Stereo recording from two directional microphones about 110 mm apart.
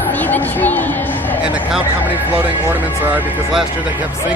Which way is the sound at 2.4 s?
15° right (ahead or behind).